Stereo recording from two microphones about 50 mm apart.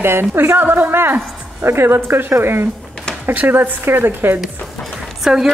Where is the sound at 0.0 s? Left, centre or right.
Right.